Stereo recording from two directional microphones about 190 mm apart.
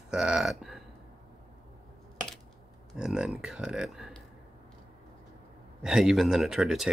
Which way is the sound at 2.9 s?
5° right (ahead or behind).